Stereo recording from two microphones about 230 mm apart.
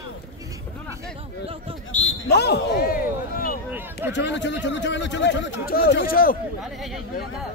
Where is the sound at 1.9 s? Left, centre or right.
Left.